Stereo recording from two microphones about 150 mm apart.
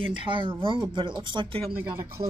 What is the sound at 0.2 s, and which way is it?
Speech, 35° right (ahead or behind).